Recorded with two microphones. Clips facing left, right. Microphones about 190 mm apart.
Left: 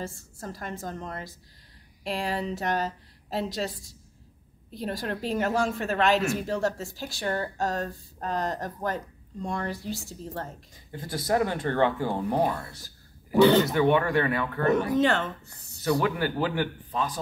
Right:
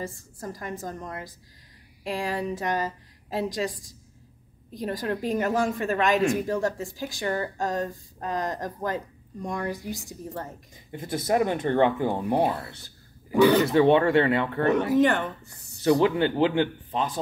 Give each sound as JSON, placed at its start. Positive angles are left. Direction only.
{"t": 0.0, "sound": "a woman's voice", "side_deg": -15}
{"t": 12.4, "sound": "speech", "side_deg": -30}
{"t": 15.0, "sound": "a woman's voice", "side_deg": -15}